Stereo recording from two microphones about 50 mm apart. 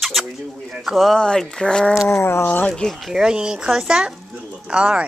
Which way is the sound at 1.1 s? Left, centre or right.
Centre.